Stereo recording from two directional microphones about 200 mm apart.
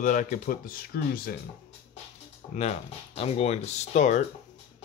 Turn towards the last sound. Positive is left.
turn(degrees=35)  # may be behind; listen again after turning